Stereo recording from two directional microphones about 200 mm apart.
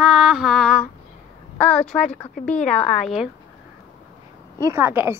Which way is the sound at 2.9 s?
Centre (ahead or behind).